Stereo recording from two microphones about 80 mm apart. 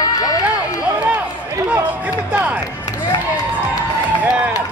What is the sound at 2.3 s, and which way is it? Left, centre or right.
Speech, right.